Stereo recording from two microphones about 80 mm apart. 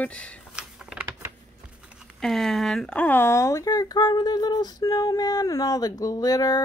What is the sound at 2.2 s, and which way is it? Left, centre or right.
Speech, centre.